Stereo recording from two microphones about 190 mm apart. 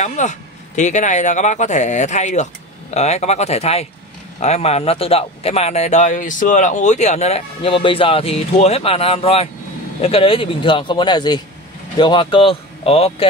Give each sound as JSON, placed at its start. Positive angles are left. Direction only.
{"t": 0.0, "sound": "speech", "side_deg": 40}